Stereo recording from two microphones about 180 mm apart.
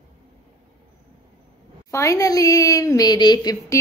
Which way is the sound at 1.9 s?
15° left (ahead or behind).